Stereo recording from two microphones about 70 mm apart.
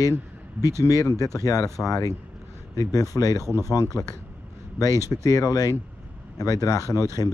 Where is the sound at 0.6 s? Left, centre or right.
Left.